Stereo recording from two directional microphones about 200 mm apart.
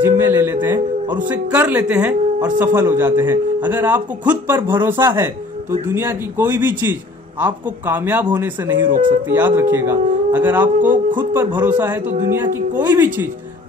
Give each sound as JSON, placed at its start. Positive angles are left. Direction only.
{"t": 0.0, "sound": "speech", "side_deg": -10}